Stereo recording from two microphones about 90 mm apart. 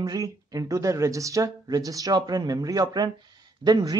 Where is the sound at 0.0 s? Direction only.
45° right (ahead or behind).